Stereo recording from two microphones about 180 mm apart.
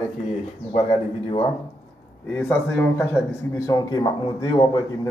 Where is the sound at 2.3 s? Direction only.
10° left (ahead or behind).